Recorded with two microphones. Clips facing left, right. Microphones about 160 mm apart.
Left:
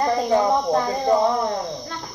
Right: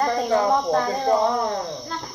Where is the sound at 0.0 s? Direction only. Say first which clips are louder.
Left 1 dB; 15° left (ahead or behind).